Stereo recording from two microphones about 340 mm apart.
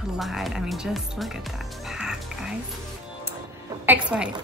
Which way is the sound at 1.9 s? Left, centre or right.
Centre.